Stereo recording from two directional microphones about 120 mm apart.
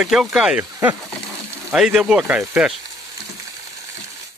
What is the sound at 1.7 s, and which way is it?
Speech, 5° right (ahead or behind).